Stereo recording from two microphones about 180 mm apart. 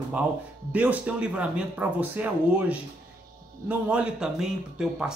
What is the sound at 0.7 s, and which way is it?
Speech, 10° right (ahead or behind).